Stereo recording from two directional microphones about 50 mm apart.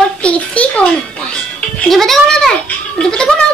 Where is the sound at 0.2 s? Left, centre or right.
Left.